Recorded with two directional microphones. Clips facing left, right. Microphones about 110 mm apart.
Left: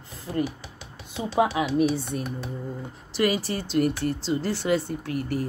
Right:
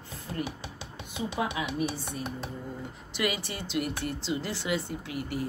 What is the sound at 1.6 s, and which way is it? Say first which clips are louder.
Speech: left 8 dB; 20° right (ahead or behind).